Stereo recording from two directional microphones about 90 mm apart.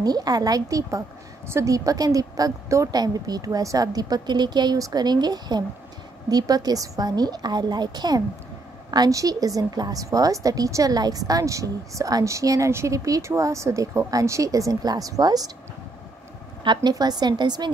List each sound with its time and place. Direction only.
0.0 s a woman's voice: 45° right (ahead or behind)
16.6 s a woman's voice: 60° right (ahead or behind)